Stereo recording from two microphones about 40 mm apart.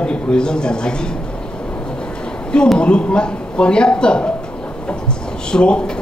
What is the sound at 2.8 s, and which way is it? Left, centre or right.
Speech, left.